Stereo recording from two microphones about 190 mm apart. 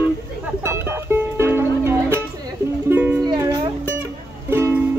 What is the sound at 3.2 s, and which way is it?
Music, 20° right (ahead or behind).